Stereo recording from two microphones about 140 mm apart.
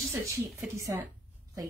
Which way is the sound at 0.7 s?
20° right (ahead or behind).